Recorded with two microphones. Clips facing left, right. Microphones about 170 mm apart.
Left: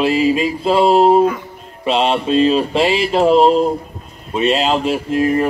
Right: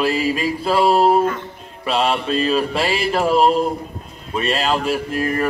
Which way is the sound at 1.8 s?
25° left (ahead or behind).